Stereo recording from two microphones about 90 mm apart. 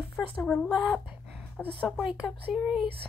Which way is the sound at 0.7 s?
5° right (ahead or behind).